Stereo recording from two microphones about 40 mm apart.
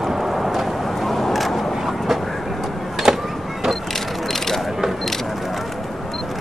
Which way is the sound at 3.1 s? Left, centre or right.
Centre.